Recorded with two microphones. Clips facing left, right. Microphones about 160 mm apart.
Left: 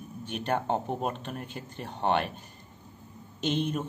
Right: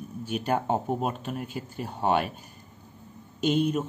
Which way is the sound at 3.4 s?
10° right (ahead or behind).